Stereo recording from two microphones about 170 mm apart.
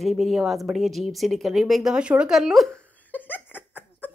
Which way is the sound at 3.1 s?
10° left (ahead or behind).